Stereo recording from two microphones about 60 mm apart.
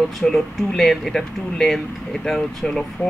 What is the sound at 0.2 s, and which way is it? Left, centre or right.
Speech, centre.